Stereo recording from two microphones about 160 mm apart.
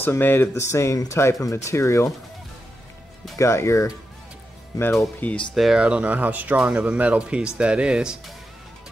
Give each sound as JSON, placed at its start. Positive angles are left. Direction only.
{"t": 0.0, "sound": "speech", "side_deg": 15}
{"t": 3.3, "sound": "speech", "side_deg": 15}
{"t": 4.9, "sound": "speech", "side_deg": 5}